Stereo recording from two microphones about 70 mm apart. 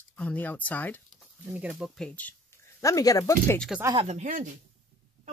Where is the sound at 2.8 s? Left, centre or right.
Left.